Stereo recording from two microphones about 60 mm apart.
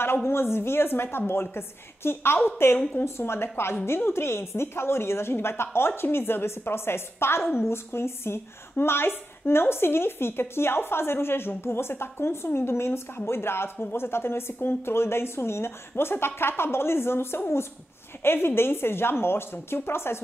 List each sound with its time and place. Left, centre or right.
0.0 s a woman's voice: left